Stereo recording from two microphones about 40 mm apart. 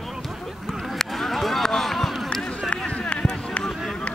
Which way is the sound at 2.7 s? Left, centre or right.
Left.